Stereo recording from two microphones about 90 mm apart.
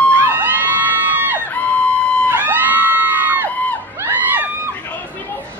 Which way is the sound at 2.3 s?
20° right (ahead or behind).